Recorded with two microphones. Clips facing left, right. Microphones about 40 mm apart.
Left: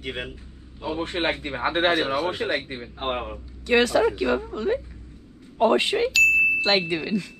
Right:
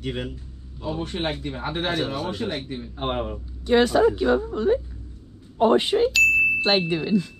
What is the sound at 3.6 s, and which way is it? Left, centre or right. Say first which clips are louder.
Speech: right 2 dB; left.